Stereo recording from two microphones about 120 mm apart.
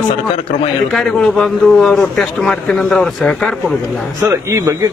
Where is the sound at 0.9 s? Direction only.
5° left (ahead or behind).